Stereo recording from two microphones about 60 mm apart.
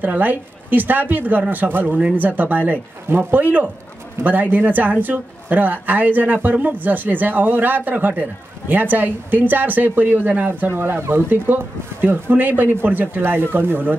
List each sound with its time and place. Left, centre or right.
0.0 s speech: right